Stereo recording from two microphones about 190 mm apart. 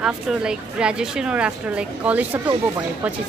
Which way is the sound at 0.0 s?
5° right (ahead or behind).